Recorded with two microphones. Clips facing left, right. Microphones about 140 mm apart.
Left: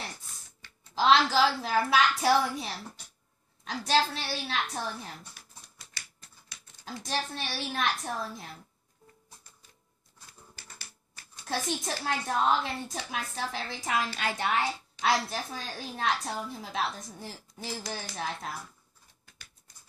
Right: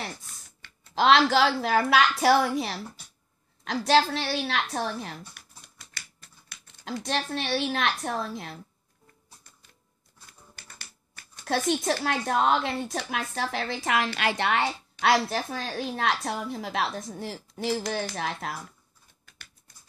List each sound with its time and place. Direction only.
0.6 s a woman's voice: 70° right (ahead or behind)
6.8 s a woman's voice: 75° right (ahead or behind)
11.3 s a woman's voice: 65° right (ahead or behind)